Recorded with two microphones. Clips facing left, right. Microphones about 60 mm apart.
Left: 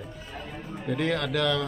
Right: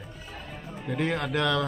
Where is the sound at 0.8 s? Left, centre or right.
Centre.